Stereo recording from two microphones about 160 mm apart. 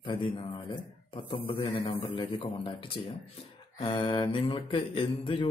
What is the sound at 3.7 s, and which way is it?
Speech, 30° left (ahead or behind).